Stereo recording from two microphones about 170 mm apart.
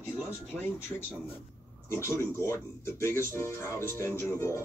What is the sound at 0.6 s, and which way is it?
Speech, 15° left (ahead or behind).